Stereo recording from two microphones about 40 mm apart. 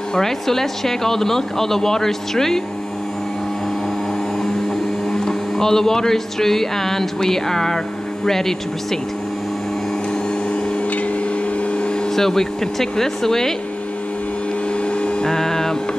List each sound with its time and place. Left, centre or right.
0.1 s speech: centre
5.1 s speech: centre
11.7 s a sound: left
12.2 s speech: centre
14.9 s music: left